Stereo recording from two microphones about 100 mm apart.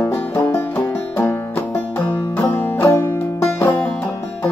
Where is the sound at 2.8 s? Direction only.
25° left (ahead or behind).